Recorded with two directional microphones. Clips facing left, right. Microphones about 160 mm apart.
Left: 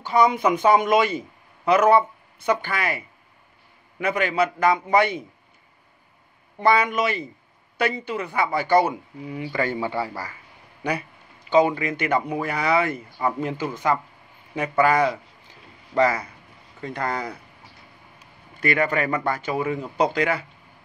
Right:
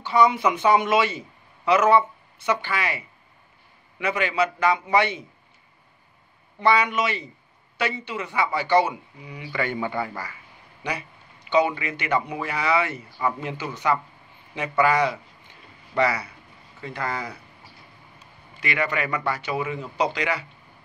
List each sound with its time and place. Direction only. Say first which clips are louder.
0.0 s speech: left 1 dB; 50° left (ahead or behind)
4.0 s speech: left 2 dB; 50° left (ahead or behind)
6.6 s speech: left 1 dB; 45° left (ahead or behind)
8.2 s speech: left 1 dB; 35° left (ahead or behind)
11.4 s speech: left 3 dB; 40° left (ahead or behind)
13.2 s speech: left 2 dB; 35° left (ahead or behind)
16.8 s speech: left 3 dB; 50° left (ahead or behind)
18.6 s speech: left 4 dB; 45° left (ahead or behind)